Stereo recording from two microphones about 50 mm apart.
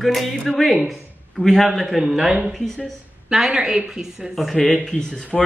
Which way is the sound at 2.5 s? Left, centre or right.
Centre.